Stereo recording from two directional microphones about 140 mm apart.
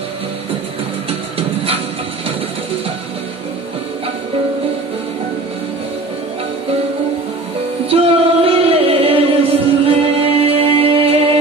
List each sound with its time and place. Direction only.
7.9 s music: 45° right (ahead or behind)